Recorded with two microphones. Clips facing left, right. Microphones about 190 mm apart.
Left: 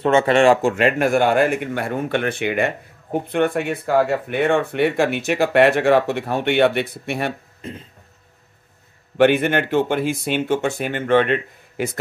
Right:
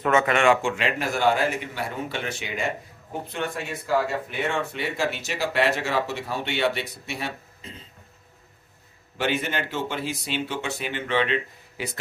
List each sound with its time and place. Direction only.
0.0 s speech: 30° left (ahead or behind); by 7.7 s 55° left (ahead or behind)
9.2 s speech: 60° left (ahead or behind)